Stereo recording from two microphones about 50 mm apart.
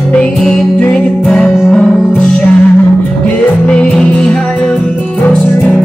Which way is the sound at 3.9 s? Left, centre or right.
Centre.